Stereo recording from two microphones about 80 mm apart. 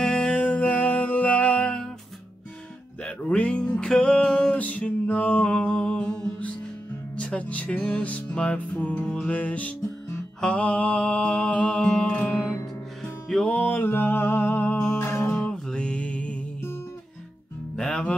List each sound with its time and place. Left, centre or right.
0.0 s music: centre
3.0 s music: centre
13.0 s music: centre
13.5 s music: left
15.3 s music: centre
17.7 s music: centre